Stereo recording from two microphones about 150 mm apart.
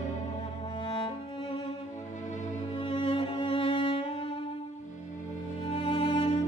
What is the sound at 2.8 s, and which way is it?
Music, 35° left (ahead or behind).